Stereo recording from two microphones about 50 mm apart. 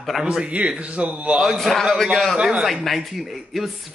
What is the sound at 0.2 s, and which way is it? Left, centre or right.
A man's voice, centre.